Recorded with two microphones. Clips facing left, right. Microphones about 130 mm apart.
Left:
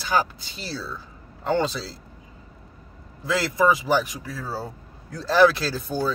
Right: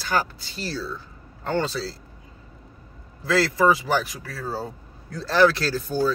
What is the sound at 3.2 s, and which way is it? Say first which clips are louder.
Speech: right 1 dB; 15° left (ahead or behind).